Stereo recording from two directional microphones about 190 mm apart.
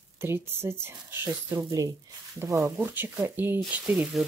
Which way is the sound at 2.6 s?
10° right (ahead or behind).